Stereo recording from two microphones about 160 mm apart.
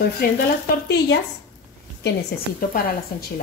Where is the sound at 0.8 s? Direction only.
90° left.